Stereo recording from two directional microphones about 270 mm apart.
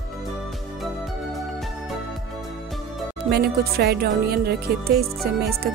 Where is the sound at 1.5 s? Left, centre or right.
Centre.